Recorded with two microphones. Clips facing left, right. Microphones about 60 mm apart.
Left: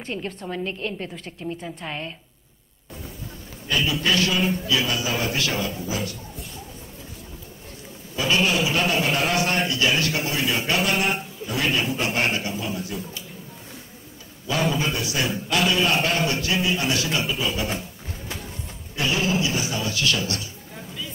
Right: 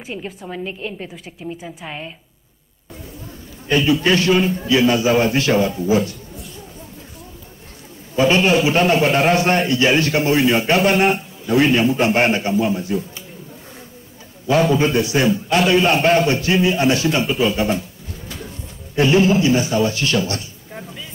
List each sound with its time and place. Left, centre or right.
0.0 s a woman's voice: centre
3.6 s a man's voice: right
8.2 s a man's voice: right
14.8 s a man's voice: right
18.9 s a man's voice: right